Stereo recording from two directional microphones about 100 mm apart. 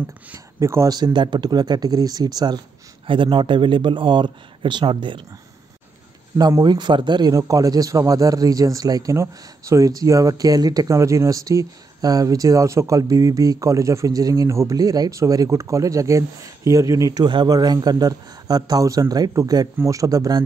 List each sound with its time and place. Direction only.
0.6 s speech: 25° right (ahead or behind)
0.8 s speech: 45° right (ahead or behind)
3.1 s speech: 55° right (ahead or behind)
6.3 s speech: 40° right (ahead or behind)